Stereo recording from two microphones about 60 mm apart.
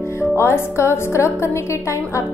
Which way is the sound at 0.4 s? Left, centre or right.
Left.